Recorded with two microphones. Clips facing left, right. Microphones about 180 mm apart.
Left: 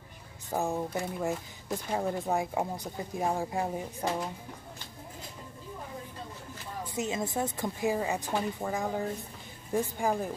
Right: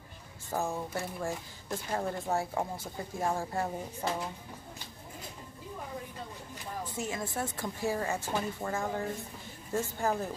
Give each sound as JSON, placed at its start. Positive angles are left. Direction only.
{"t": 0.5, "sound": "speech", "side_deg": 15}
{"t": 7.0, "sound": "speech", "side_deg": 20}